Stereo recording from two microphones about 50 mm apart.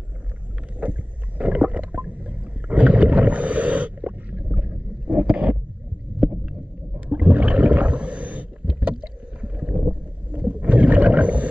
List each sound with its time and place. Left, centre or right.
0.7 s rowboat: right
4.5 s boat: right
7.1 s whale vocalization: right
8.7 s rowboat: centre
10.4 s a sound: right